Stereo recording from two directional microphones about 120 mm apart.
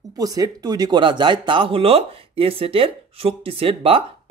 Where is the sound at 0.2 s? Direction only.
30° right (ahead or behind).